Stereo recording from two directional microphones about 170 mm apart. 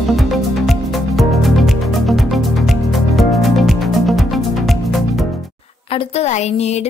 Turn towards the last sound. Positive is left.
turn(degrees=40)  # may be behind; listen again after turning